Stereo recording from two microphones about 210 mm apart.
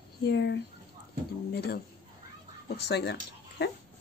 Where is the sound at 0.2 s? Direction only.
55° left (ahead or behind).